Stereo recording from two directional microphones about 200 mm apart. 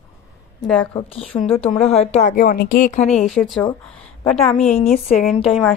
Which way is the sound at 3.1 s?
5° left (ahead or behind).